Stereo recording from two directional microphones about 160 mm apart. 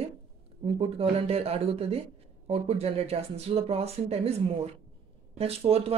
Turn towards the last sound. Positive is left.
turn(degrees=-40)  # may be behind; listen again after turning